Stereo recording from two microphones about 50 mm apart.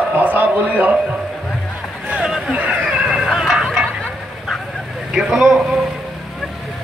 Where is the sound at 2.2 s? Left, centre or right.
Centre.